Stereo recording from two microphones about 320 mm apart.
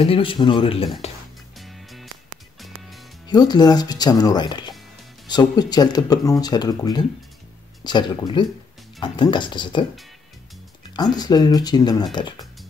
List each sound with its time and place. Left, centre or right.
0.0 s speech: centre
1.6 s music: centre
3.3 s speech: centre
11.1 s speech: centre